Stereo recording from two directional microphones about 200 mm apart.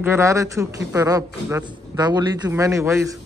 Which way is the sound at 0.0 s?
15° right (ahead or behind).